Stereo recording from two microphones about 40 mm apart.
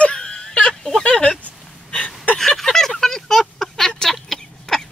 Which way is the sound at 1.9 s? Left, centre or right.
Left.